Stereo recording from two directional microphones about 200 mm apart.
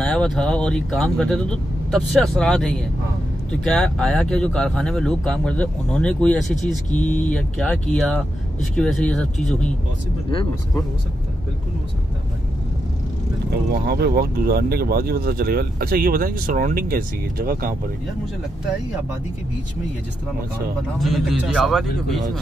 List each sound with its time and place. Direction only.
0.0 s speech: 5° left (ahead or behind)
10.3 s speech: 25° left (ahead or behind)
13.8 s speech: 55° right (ahead or behind)
21.0 s speech: centre (ahead or behind)